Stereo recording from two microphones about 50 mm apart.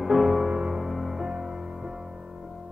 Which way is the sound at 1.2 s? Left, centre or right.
Centre.